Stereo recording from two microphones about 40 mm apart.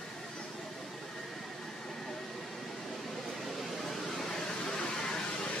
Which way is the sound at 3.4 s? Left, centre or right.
Centre.